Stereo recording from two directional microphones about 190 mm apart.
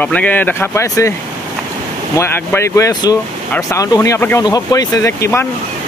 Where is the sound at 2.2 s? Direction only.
10° left (ahead or behind).